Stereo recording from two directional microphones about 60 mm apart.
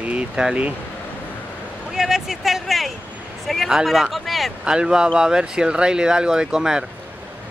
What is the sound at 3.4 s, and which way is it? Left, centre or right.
Speech, centre.